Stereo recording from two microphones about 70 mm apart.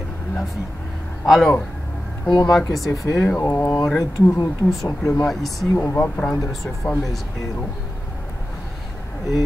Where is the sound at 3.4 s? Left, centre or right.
Left.